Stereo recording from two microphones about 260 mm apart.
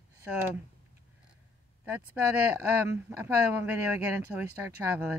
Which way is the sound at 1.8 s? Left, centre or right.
Centre.